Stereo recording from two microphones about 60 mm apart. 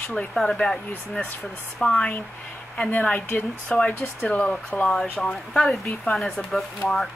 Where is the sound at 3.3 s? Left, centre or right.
Left.